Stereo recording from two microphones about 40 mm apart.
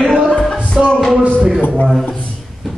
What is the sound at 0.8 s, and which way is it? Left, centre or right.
Music, centre.